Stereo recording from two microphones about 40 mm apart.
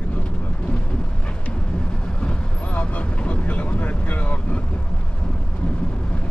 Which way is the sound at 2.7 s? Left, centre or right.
Left.